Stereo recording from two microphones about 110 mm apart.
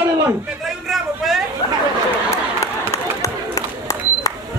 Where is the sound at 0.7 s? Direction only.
Centre (ahead or behind).